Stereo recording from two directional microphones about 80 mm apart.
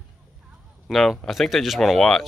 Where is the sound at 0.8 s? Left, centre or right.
Centre.